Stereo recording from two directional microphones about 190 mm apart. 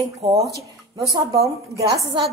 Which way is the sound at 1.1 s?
30° right (ahead or behind).